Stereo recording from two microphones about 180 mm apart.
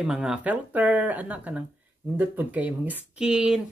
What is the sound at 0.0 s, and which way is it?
Speech, 5° right (ahead or behind).